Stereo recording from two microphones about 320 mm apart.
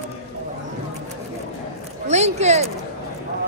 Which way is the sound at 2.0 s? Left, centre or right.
Right.